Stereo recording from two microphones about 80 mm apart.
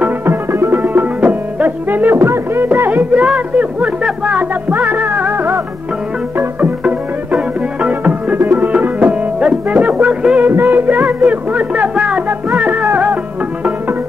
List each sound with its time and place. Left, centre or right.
0.0 s music: right
0.8 s music: right
2.1 s music: right
7.8 s music: centre
10.5 s music: right
11.2 s a sound: centre
12.9 s music: right